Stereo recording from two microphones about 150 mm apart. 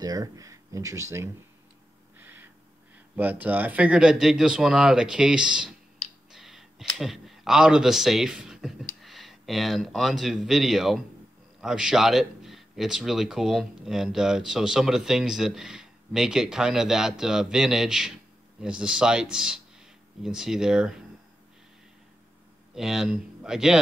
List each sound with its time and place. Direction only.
0.0 s speech: 25° right (ahead or behind)
2.1 s owl: 15° right (ahead or behind)
3.2 s speech: 10° right (ahead or behind)
22.8 s speech: 5° right (ahead or behind)